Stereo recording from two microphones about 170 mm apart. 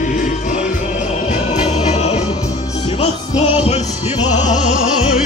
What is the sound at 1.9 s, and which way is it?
Music, 40° left (ahead or behind).